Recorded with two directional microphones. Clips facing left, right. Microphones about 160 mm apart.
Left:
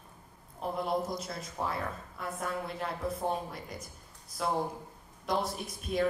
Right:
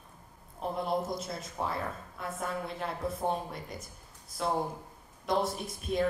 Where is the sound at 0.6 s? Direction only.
Centre (ahead or behind).